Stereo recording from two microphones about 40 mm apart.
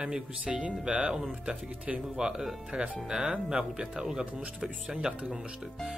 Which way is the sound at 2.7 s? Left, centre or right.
Right.